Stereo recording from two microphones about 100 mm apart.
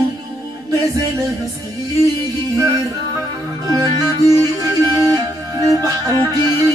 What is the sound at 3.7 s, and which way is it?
Music, 35° right (ahead or behind).